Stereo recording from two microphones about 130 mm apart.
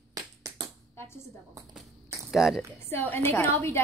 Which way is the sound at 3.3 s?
20° left (ahead or behind).